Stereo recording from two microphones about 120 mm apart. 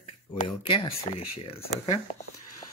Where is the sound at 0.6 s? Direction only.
45° left (ahead or behind).